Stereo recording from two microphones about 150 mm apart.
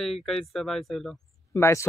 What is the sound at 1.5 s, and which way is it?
Speech, 20° left (ahead or behind).